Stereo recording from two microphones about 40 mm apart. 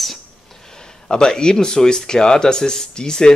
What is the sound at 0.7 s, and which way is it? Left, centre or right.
Speech, centre.